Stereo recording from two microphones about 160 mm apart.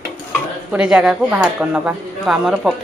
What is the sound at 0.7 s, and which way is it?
Speech, 5° right (ahead or behind).